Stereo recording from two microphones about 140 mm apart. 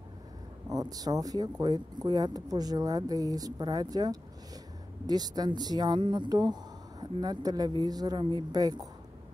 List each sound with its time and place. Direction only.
0.7 s speech: 25° right (ahead or behind)